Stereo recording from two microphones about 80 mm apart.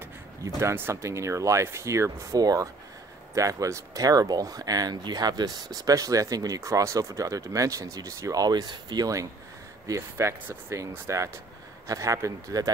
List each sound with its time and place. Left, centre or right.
0.6 s speech: right
2.3 s speech: right
9.8 s speech: right